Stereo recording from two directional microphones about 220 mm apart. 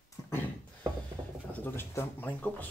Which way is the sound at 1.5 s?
10° left (ahead or behind).